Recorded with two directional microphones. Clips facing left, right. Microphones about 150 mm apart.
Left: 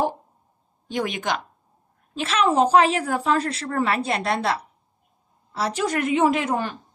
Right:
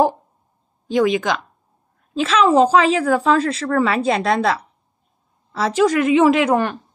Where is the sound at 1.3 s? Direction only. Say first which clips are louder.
Right 4 dB; 90° right.